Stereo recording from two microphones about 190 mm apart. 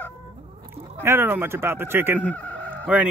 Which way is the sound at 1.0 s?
10° right (ahead or behind).